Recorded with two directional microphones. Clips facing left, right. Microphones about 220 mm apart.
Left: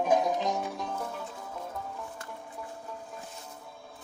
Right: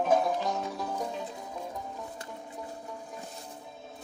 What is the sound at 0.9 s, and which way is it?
Music, 15° right (ahead or behind).